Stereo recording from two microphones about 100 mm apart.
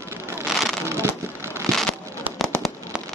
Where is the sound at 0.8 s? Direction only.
25° right (ahead or behind).